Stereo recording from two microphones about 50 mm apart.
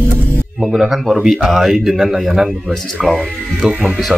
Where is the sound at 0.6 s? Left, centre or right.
Centre.